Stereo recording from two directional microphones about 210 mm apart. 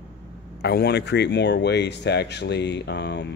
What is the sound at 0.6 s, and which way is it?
Speech, 50° left (ahead or behind).